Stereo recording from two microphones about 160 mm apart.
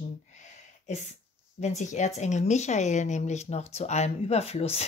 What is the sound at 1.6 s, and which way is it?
Speech, 45° left (ahead or behind).